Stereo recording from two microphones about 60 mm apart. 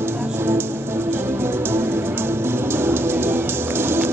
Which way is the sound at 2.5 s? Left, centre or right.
Right.